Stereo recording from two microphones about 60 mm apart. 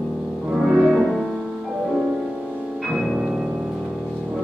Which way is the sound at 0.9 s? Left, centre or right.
Centre.